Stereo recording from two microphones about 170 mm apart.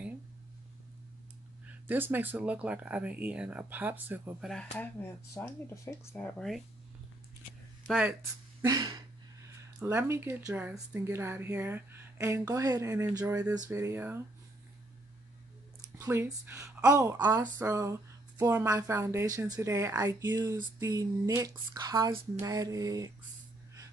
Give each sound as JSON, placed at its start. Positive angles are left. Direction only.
{"t": 1.7, "sound": "speech", "side_deg": -10}
{"t": 5.3, "sound": "speech", "side_deg": 15}
{"t": 8.6, "sound": "speech", "side_deg": -25}
{"t": 16.0, "sound": "speech", "side_deg": -15}